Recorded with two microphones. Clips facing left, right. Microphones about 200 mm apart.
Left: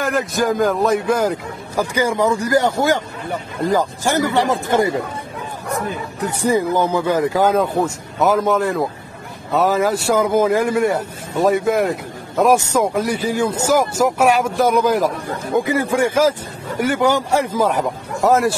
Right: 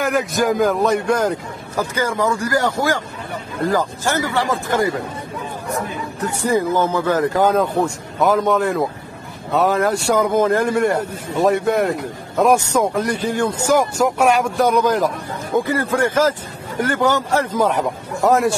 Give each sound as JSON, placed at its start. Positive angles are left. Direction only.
{"t": 0.0, "sound": "a man's voice", "side_deg": 0}
{"t": 6.2, "sound": "a man's voice", "side_deg": 15}